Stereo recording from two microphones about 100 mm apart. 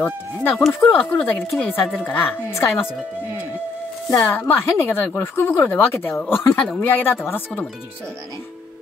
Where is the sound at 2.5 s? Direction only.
30° left (ahead or behind).